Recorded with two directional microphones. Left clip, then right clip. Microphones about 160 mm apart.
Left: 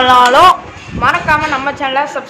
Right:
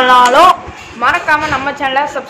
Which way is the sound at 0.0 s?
15° left (ahead or behind).